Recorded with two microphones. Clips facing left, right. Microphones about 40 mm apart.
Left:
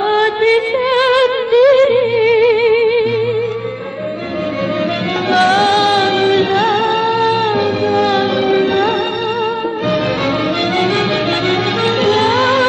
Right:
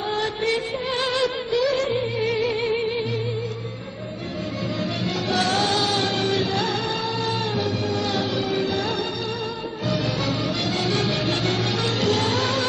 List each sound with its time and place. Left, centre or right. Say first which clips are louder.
0.1 s music: left 11 dB; left
5.4 s music: left 11 dB; left
6.5 s music: left 11 dB; left
12.0 s music: left 10 dB; left